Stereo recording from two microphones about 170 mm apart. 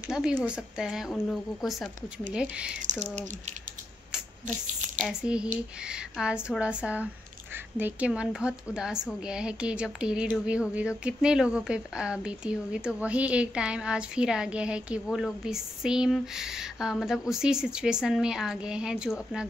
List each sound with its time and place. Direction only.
0.1 s a woman's voice: 5° right (ahead or behind)
2.8 s typing: 45° right (ahead or behind)
5.0 s a woman's voice: 5° right (ahead or behind)